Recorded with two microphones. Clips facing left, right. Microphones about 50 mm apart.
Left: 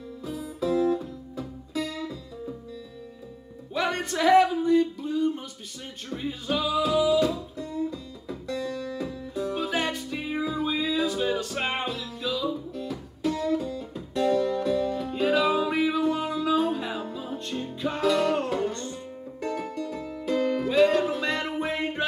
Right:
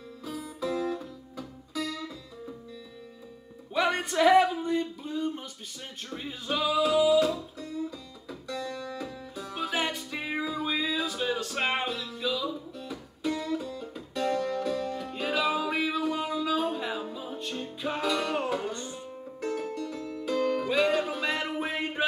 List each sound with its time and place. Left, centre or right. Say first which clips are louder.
0.2 s music: left 4 dB; centre
1.3 s music: left 4 dB; left
3.7 s a sound: right 1 dB; centre
6.1 s music: left 3 dB; centre
7.9 s music: left 5 dB; centre
9.0 s music: left 7 dB; centre
12.4 s music: left 5 dB; centre
19.4 s music: left 1 dB; centre
20.6 s music: left 5 dB; centre